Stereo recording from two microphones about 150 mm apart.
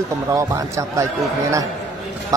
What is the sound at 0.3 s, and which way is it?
Speech, 20° right (ahead or behind).